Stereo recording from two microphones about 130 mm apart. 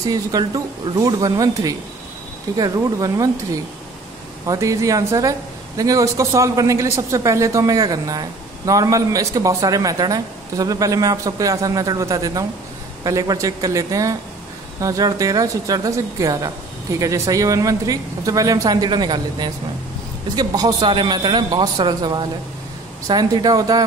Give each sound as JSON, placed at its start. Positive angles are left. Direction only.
{"t": 0.0, "sound": "a man's voice", "side_deg": -30}
{"t": 4.5, "sound": "a man's voice", "side_deg": -25}